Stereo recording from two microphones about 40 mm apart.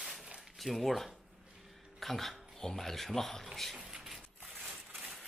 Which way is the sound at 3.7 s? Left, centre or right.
Centre.